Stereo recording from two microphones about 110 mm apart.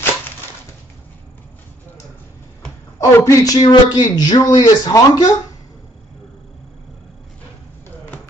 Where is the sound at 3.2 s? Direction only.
30° left (ahead or behind).